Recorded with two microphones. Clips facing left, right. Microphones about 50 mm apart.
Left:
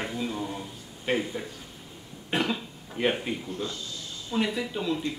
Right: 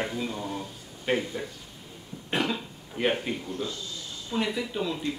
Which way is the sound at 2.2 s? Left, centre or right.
Centre.